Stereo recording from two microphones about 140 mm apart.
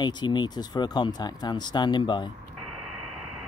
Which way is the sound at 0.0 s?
30° left (ahead or behind).